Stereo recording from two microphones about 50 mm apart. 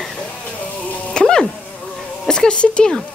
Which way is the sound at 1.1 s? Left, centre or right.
Centre.